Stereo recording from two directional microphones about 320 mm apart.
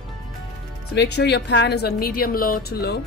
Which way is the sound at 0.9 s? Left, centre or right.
Left.